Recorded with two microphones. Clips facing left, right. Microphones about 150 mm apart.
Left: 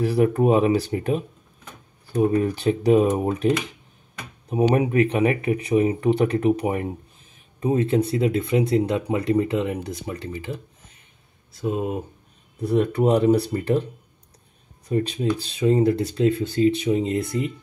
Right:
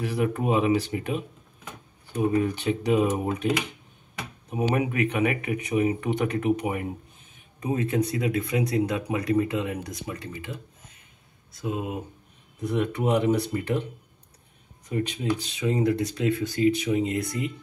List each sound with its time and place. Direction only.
0.0 s speech: 35° left (ahead or behind)
4.5 s speech: 35° left (ahead or behind)
14.9 s speech: 40° left (ahead or behind)